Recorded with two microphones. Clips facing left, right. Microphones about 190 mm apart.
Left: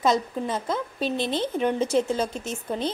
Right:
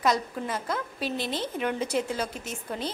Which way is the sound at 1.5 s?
30° left (ahead or behind).